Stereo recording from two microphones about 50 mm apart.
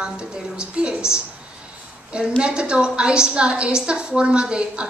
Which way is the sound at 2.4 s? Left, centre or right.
Centre.